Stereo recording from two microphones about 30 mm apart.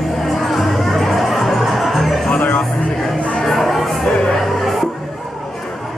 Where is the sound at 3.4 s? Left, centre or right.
Centre.